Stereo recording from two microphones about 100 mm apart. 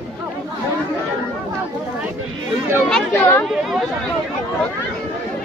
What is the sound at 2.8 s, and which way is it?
Speech, 5° left (ahead or behind).